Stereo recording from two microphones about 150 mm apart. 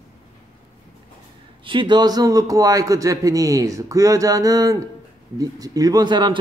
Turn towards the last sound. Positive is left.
turn(degrees=-30)  # may be behind; listen again after turning